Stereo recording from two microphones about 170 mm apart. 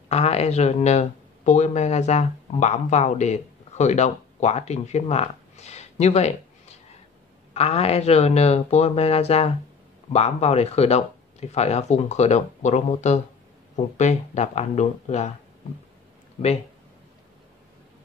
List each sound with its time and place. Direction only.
0.1 s speech: 40° left (ahead or behind)